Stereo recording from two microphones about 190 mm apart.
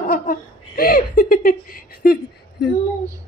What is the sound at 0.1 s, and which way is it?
Laughter, 50° left (ahead or behind).